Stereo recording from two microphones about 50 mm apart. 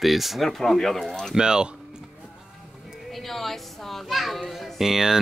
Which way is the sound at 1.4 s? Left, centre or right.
Centre.